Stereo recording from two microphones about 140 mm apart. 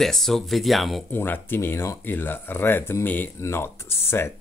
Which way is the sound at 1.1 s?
15° left (ahead or behind).